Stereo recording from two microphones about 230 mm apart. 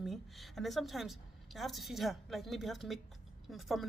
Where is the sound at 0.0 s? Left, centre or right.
Centre.